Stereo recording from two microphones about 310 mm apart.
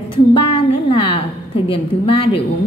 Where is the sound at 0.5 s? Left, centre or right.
Centre.